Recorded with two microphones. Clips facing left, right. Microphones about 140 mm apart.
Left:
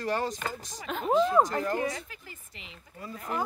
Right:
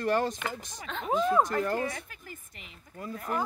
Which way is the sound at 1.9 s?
50° right (ahead or behind).